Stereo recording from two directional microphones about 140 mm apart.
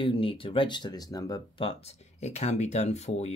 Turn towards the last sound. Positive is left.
turn(degrees=50)  # may be behind; listen again after turning